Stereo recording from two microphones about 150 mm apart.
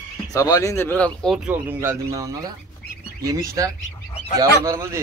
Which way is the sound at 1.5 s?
15° right (ahead or behind).